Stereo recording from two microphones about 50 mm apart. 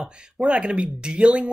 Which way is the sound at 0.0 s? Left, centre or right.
Right.